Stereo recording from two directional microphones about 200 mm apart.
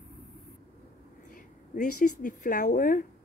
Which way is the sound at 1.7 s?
40° left (ahead or behind).